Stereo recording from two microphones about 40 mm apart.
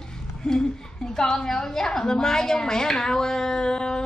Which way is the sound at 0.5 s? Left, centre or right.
Centre.